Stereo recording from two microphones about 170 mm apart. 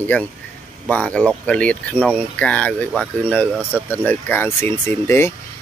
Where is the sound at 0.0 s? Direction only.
10° left (ahead or behind).